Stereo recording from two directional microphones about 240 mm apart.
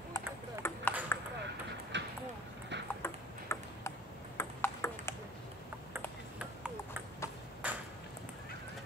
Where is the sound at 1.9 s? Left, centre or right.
Right.